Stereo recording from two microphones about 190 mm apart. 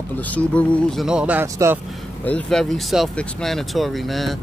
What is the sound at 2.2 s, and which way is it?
Speech, 5° left (ahead or behind).